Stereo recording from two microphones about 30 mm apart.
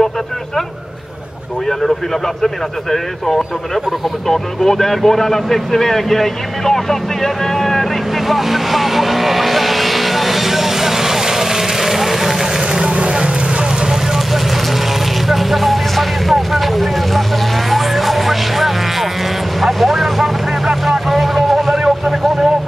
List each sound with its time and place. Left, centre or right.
2.4 s speech: centre
8.3 s vehicle: centre
12.8 s vehicle: right
14.1 s vehicle: centre